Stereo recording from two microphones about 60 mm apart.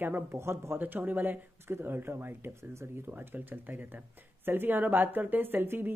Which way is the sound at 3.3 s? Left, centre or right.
Right.